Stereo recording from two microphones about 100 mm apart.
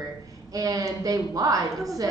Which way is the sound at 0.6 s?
35° right (ahead or behind).